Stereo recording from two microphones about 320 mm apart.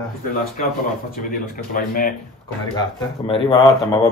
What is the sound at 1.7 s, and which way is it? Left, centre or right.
Speech, left.